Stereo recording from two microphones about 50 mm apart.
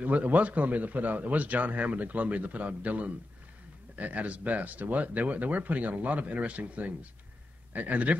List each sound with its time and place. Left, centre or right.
0.0 s a man's voice: right